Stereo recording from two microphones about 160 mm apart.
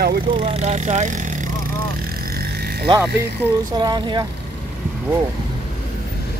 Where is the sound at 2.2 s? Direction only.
75° right (ahead or behind).